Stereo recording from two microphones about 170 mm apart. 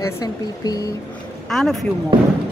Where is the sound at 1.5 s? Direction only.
Centre (ahead or behind).